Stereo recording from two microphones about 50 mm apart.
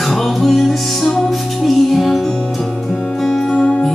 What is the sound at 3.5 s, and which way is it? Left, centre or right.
Music, left.